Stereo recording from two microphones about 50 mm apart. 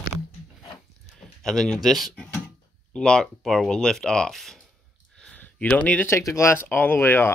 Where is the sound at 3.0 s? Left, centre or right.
Centre.